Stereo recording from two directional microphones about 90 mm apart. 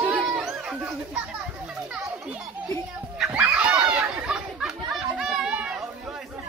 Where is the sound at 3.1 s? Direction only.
10° right (ahead or behind).